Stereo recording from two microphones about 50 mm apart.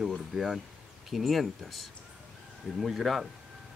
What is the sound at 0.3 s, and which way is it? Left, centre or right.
Speech, centre.